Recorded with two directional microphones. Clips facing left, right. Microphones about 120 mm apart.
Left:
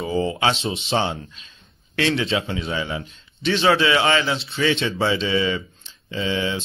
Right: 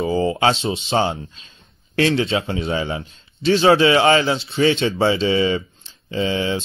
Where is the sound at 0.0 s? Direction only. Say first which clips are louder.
Right 4 dB; 30° right (ahead or behind).